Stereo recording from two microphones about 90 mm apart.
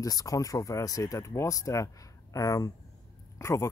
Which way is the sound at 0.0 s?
40° left (ahead or behind).